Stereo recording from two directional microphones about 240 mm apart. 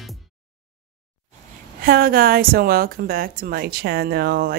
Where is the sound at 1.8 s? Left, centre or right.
Right.